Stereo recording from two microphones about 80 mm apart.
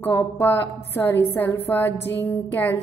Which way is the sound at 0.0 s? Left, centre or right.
Left.